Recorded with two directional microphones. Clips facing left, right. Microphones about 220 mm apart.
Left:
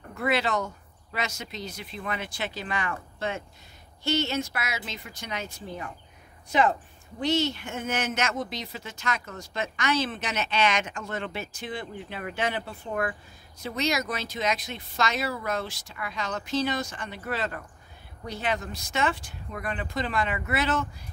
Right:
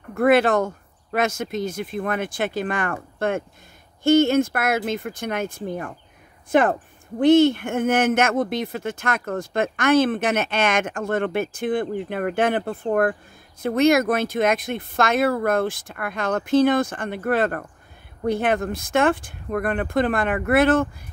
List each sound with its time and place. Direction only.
0.1 s speech: 50° right (ahead or behind)